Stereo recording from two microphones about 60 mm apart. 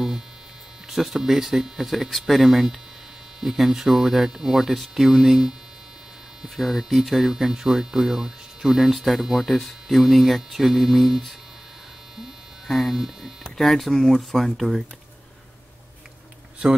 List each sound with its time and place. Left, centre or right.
0.8 s speech: centre
12.2 s electric shaver: centre
13.4 s speech: centre